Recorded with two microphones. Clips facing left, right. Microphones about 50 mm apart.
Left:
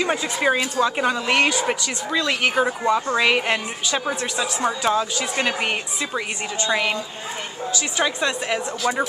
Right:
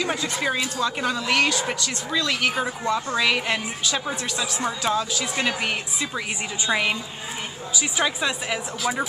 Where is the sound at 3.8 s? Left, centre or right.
Centre.